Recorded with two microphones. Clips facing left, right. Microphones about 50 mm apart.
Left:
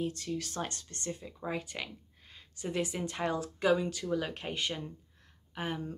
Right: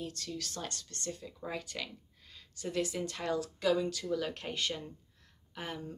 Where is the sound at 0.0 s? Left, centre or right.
Left.